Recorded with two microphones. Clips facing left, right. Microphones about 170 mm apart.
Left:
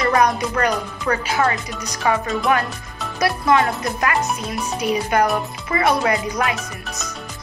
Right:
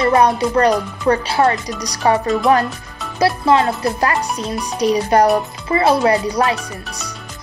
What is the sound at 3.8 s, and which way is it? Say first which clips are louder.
Speech: right 3 dB; 35° right (ahead or behind).